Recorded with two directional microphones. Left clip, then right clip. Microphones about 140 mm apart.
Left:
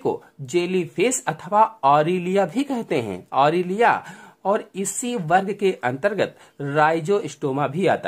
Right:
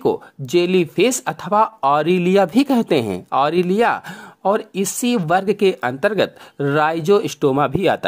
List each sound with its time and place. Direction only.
0.0 s speech: 40° right (ahead or behind); by 8.1 s 55° right (ahead or behind)